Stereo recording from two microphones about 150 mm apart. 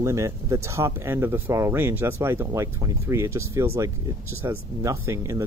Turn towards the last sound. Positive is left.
turn(degrees=-20)  # may be behind; listen again after turning